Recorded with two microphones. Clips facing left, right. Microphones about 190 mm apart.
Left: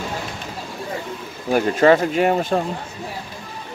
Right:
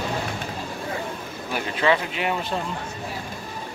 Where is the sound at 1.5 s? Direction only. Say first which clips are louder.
Left 8 dB; 45° left (ahead or behind).